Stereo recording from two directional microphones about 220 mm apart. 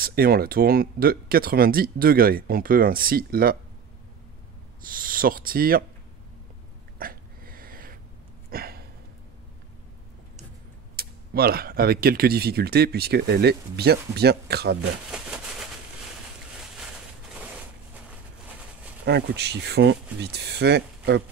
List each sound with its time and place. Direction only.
0.0 s speech: 45° right (ahead or behind)
4.8 s speech: 40° right (ahead or behind)
7.0 s a sound: 40° right (ahead or behind)
11.0 s speech: 45° right (ahead or behind)
15.0 s a sound: 5° right (ahead or behind)
19.0 s speech: 50° right (ahead or behind)